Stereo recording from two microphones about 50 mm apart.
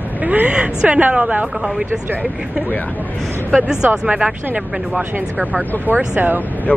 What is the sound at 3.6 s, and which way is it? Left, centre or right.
Speech, centre.